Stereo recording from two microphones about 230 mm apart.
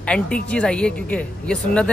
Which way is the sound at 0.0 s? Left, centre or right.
Centre.